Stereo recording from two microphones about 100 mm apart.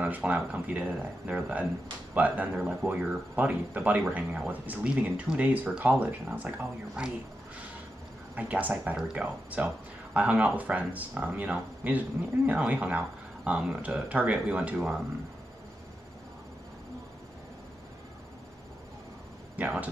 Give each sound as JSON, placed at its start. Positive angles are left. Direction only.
{"t": 0.0, "sound": "speech", "side_deg": -15}
{"t": 8.4, "sound": "speech", "side_deg": -15}
{"t": 19.5, "sound": "speech", "side_deg": -15}